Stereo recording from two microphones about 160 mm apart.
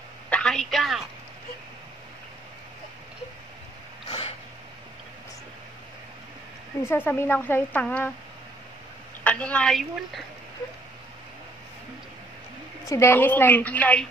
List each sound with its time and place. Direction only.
0.3 s a woman's voice: 5° left (ahead or behind)
4.1 s a sound: 40° left (ahead or behind)
6.8 s speech: 15° left (ahead or behind)
9.2 s speech: 10° left (ahead or behind)
12.8 s speech: 20° left (ahead or behind)